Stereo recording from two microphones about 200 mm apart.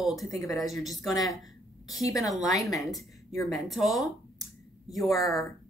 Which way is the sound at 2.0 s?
15° left (ahead or behind).